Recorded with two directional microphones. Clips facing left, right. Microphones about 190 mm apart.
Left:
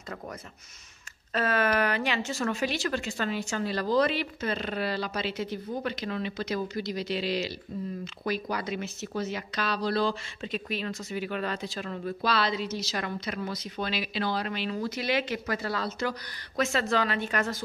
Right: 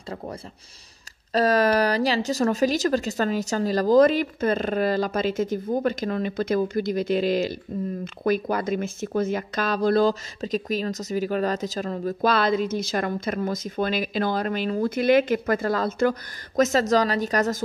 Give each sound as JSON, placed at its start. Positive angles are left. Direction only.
{"t": 1.3, "sound": "speech", "side_deg": -35}